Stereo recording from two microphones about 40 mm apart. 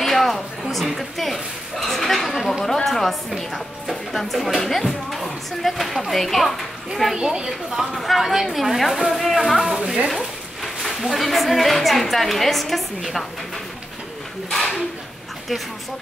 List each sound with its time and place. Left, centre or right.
0.0 s a sound: centre
0.9 s a woman's voice: centre
2.3 s chatter: centre
2.6 s speech: centre
7.2 s a woman's voice: centre
7.4 s speech: centre
10.0 s a sound: centre
11.1 s speech: centre
14.5 s a sound: centre